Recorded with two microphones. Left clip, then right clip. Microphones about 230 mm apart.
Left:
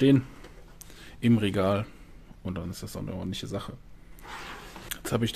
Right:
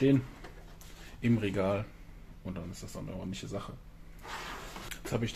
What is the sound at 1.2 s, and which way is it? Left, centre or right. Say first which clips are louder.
Speech: left 5 dB; left.